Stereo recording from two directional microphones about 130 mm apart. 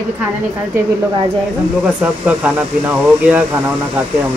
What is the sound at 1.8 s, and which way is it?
Speech, 10° right (ahead or behind).